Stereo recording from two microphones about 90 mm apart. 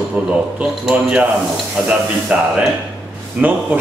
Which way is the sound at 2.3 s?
15° right (ahead or behind).